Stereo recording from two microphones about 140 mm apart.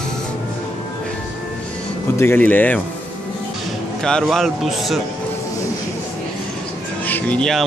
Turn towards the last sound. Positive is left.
turn(degrees=5)  # may be behind; listen again after turning